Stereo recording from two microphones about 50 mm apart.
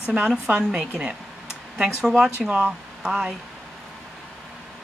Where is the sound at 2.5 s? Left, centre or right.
Right.